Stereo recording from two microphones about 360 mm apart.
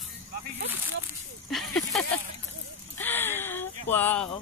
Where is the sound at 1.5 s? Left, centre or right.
Centre.